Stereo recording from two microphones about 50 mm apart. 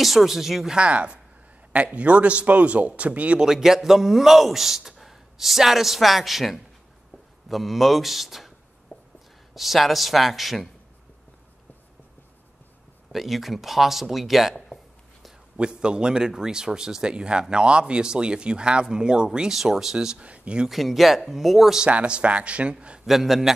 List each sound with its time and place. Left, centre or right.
0.0 s a man's voice: centre
0.7 s a man's voice: right
3.4 s a man's voice: centre
8.9 s a sound: left
9.6 s a man's voice: centre
13.1 s a man's voice: centre
15.5 s a man's voice: centre
20.2 s speech: right
20.6 s a man's voice: centre
21.8 s a man's voice: right
23.0 s a man's voice: centre